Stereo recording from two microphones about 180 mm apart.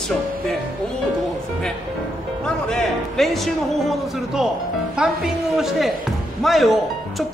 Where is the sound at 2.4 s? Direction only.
5° left (ahead or behind).